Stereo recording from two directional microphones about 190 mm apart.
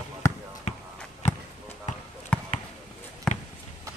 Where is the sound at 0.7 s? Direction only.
35° left (ahead or behind).